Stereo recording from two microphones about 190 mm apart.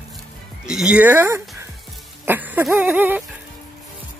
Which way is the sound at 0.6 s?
5° right (ahead or behind).